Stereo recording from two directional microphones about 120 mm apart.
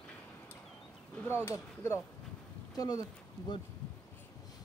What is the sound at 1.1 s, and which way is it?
Speech, 15° left (ahead or behind).